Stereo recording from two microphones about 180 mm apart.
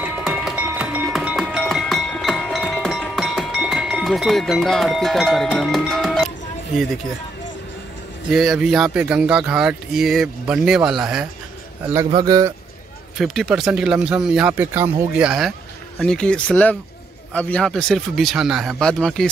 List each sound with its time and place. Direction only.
0.0 s music: 5° right (ahead or behind)
8.3 s speech: centre (ahead or behind)
12.1 s speech: 20° right (ahead or behind)
13.2 s speech: centre (ahead or behind)